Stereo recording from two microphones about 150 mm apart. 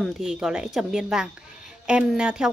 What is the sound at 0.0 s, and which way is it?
A woman's voice, 5° right (ahead or behind).